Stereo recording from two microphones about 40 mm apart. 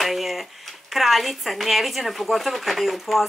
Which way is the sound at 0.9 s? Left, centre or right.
Centre.